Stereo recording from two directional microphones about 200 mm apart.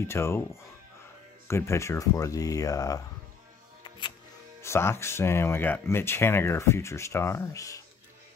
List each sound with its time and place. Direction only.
0.0 s speech: 10° left (ahead or behind)
1.5 s speech: 15° left (ahead or behind)
4.6 s speech: 15° left (ahead or behind)